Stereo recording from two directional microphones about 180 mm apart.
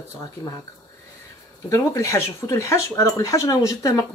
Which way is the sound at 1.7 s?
15° left (ahead or behind).